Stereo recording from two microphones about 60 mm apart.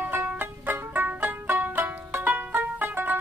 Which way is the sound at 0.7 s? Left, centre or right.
Right.